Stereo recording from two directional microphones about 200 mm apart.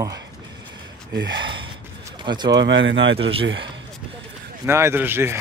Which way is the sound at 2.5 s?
65° right (ahead or behind).